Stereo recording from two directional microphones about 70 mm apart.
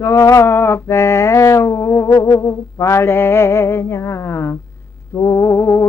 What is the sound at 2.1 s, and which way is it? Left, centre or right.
Music, left.